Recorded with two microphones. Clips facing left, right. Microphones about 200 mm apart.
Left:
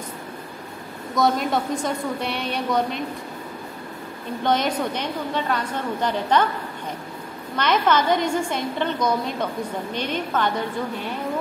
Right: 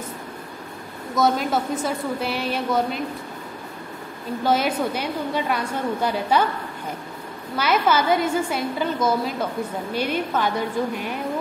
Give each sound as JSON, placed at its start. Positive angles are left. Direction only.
{"t": 1.1, "sound": "a woman's voice", "side_deg": 0}
{"t": 4.4, "sound": "a woman's voice", "side_deg": -5}
{"t": 7.5, "sound": "a woman's voice", "side_deg": -5}